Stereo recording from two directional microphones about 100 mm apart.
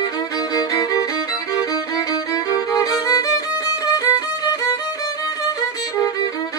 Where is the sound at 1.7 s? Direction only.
40° left (ahead or behind).